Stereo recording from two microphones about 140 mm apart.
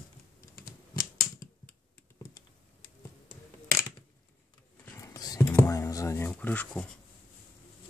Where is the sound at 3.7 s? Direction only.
20° left (ahead or behind).